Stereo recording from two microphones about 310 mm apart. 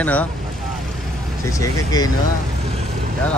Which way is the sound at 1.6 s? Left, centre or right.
Centre.